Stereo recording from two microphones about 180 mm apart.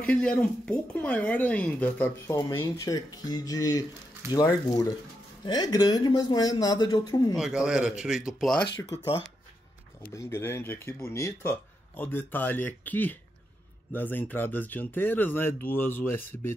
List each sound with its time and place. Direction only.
0.0 s speech: 5° left (ahead or behind); by 7.3 s 20° left (ahead or behind)
7.3 s speech: 5° right (ahead or behind)
10.1 s speech: 15° left (ahead or behind)